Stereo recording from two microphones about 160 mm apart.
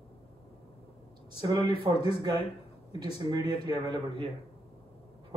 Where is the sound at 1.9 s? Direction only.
35° left (ahead or behind).